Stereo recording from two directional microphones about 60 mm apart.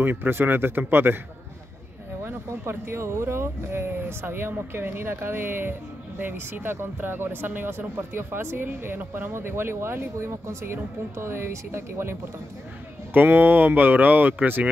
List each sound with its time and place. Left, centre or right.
0.0 s speech: right
2.2 s speech: right
13.1 s speech: right